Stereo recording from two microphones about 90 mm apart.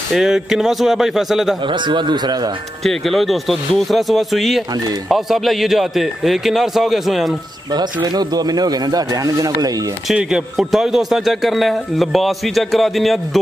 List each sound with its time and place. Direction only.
0.1 s a man's voice: 5° right (ahead or behind)
1.7 s speech: 60° right (ahead or behind)
2.8 s a man's voice: centre (ahead or behind)
7.7 s speech: 50° right (ahead or behind)
10.1 s a man's voice: 5° right (ahead or behind)